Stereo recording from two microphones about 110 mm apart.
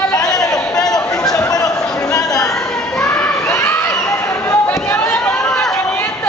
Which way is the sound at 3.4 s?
20° left (ahead or behind).